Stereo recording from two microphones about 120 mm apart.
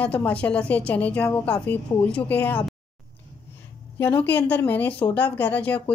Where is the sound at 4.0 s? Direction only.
15° left (ahead or behind).